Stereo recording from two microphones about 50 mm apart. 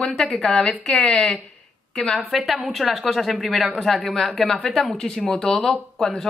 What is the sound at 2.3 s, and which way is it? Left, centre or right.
Speech, centre.